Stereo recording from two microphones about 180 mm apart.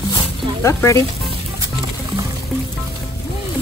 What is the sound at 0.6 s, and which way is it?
Speech, 15° left (ahead or behind).